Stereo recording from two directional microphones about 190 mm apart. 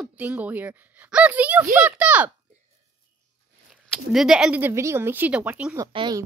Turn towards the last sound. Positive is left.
turn(degrees=-20)  # may be behind; listen again after turning